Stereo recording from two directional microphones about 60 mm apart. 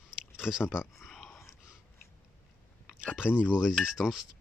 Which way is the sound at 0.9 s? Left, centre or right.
Centre.